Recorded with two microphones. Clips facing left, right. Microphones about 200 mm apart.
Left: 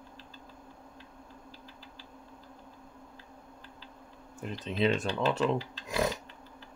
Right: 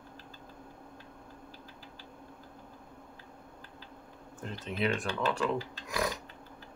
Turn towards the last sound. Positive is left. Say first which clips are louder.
# left 3 dB
turn(degrees=25)  # may be behind; listen again after turning